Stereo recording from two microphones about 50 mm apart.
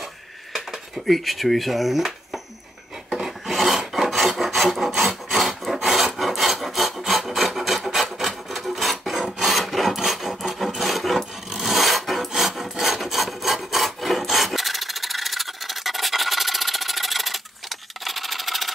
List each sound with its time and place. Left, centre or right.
0.5 s speech: centre
3.2 s filing: centre
12.3 s rub: centre